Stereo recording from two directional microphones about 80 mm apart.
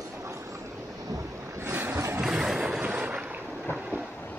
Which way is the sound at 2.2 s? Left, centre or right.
Centre.